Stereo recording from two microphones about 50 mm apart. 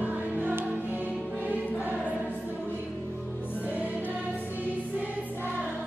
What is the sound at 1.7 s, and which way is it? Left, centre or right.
Choir, right.